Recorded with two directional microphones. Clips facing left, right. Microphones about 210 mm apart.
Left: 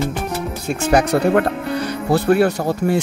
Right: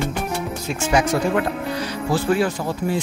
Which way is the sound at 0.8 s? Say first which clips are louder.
Left 4 dB; 60° left (ahead or behind).